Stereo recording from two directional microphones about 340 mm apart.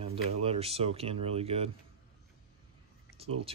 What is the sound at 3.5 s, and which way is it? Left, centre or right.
Speech, centre.